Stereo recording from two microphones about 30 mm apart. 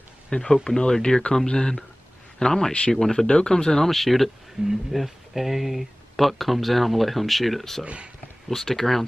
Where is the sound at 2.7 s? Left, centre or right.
Left.